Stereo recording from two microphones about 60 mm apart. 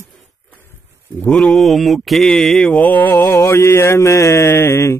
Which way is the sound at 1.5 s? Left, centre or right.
Centre.